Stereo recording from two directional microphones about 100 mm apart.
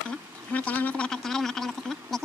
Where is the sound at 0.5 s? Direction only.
15° left (ahead or behind).